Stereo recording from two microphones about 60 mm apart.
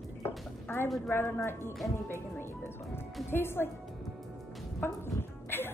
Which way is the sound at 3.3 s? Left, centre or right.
Left.